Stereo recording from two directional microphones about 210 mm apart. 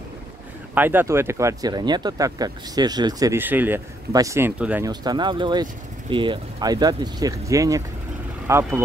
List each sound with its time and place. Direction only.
0.7 s speech: 10° right (ahead or behind)
4.8 s speech: 20° right (ahead or behind)